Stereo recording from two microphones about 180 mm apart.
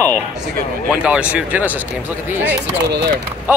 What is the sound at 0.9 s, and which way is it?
Speech, 5° right (ahead or behind).